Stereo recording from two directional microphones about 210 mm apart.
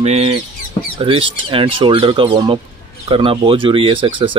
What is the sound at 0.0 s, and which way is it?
Rodents, 30° right (ahead or behind).